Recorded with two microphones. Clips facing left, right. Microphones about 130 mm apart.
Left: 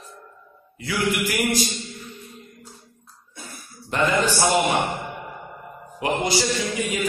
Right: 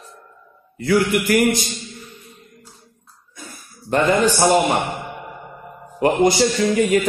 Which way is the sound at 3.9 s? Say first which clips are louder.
Right 5 dB; 45° right (ahead or behind).